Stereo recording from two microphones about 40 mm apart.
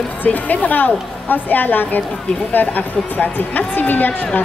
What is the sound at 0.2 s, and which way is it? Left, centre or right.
A woman's voice, left.